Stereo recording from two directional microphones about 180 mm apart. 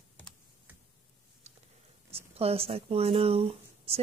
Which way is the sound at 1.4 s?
40° right (ahead or behind).